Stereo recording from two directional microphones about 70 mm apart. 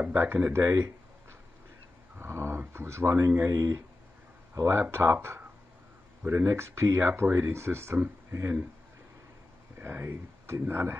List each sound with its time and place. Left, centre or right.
0.2 s speech: right
2.1 s a sound: right
2.7 s speech: right
3.5 s speech: right
9.8 s speech: right